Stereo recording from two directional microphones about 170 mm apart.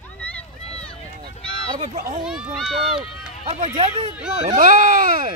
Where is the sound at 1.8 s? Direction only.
50° right (ahead or behind).